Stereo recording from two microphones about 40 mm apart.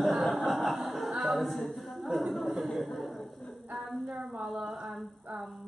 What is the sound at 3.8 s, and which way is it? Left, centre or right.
Speech, centre.